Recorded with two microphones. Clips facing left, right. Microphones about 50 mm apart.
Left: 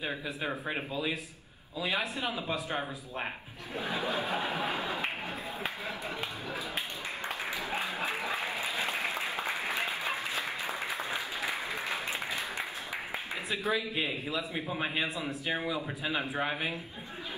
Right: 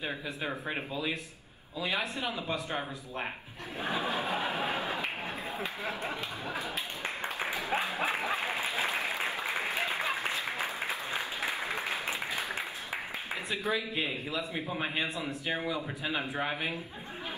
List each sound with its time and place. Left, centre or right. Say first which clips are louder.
0.0 s a man's voice: left 1 dB; centre
3.8 s a sound: right 1 dB; right
7.3 s music: right 4 dB; right
8.5 s applause: right 1 dB; right
13.5 s a man's voice: left 1 dB; centre